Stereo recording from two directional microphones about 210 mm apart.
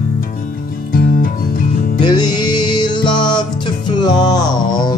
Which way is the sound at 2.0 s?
20° left (ahead or behind).